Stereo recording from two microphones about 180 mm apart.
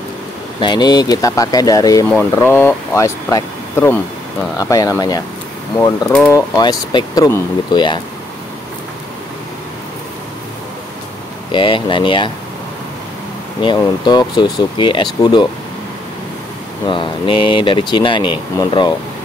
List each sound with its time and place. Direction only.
0.6 s speech: 25° left (ahead or behind)
11.5 s speech: 30° left (ahead or behind)
13.6 s speech: 25° left (ahead or behind)
16.8 s speech: 30° left (ahead or behind)